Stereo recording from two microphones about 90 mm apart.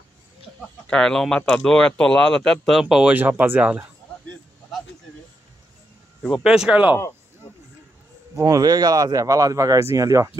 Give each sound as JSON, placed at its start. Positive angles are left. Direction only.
{"t": 0.6, "sound": "speech", "side_deg": 10}
{"t": 3.1, "sound": "speech", "side_deg": -20}
{"t": 6.3, "sound": "speech", "side_deg": -5}
{"t": 8.4, "sound": "speech", "side_deg": -45}